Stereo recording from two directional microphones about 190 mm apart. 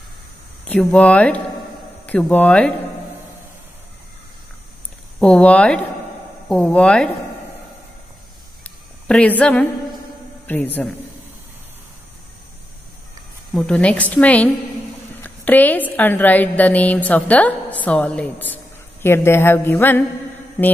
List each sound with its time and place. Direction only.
0.7 s a woman's voice: 5° left (ahead or behind)
5.2 s speech: 5° left (ahead or behind)
8.6 s a sound: 5° left (ahead or behind)
10.4 s a man's voice: 10° left (ahead or behind)
13.5 s a woman's voice: 5° left (ahead or behind)